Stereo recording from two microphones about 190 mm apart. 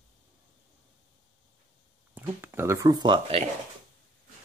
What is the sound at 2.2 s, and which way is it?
Speech, 10° right (ahead or behind).